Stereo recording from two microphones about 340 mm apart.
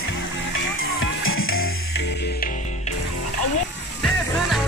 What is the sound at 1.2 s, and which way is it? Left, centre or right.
Music, left.